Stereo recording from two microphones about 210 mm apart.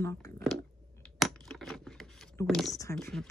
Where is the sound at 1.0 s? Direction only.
Centre (ahead or behind).